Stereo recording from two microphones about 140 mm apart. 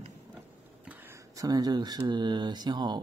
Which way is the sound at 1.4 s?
25° right (ahead or behind).